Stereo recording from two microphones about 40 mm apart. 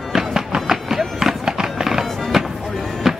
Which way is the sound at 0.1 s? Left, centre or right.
Centre.